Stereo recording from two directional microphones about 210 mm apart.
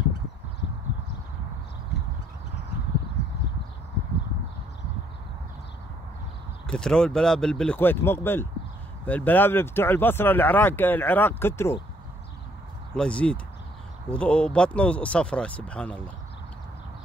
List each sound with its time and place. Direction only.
6.7 s speech: 5° left (ahead or behind)
12.9 s speech: 5° left (ahead or behind)